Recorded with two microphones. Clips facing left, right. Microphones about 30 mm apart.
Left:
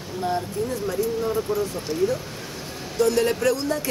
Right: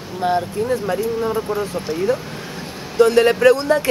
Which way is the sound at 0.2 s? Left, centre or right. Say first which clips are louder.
Right 6 dB; right.